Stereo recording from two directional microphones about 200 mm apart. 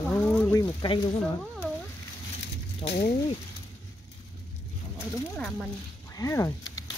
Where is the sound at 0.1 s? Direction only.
10° left (ahead or behind).